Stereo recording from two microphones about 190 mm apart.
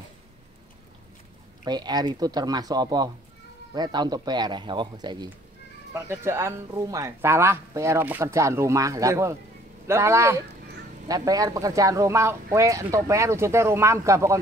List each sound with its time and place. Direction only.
1.6 s speech: 20° right (ahead or behind)